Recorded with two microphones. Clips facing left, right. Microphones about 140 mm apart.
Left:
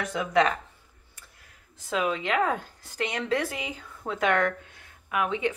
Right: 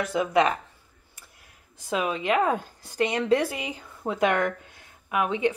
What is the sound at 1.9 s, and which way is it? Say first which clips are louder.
Speech: right 2 dB; 15° right (ahead or behind).